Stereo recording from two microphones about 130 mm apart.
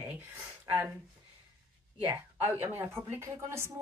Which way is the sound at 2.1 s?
15° right (ahead or behind).